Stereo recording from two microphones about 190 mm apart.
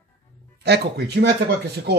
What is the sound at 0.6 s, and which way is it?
Speech, 60° right (ahead or behind).